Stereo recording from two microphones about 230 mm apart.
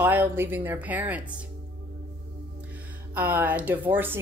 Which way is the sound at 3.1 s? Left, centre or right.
Centre.